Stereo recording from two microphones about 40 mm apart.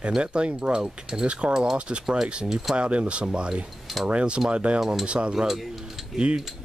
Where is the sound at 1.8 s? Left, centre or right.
Right.